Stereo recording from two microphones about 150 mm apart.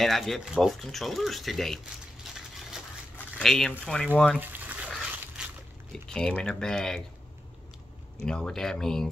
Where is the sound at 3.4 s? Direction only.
Centre (ahead or behind).